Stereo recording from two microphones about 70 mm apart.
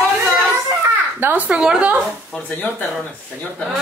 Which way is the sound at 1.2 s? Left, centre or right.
Right.